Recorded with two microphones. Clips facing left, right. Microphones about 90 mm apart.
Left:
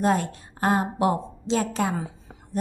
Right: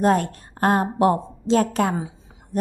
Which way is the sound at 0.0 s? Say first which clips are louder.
Right 4 dB; 50° right (ahead or behind).